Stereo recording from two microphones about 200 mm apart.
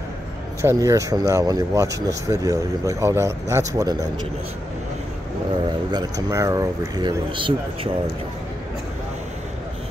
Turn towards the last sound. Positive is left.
turn(degrees=-25)  # may be behind; listen again after turning